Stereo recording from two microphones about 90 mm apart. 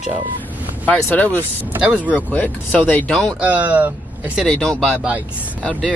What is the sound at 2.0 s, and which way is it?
Speech, 15° left (ahead or behind).